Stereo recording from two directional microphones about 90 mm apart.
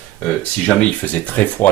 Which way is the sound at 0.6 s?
10° left (ahead or behind).